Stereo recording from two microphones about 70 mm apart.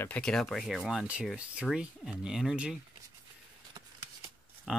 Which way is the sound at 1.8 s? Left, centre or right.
Centre.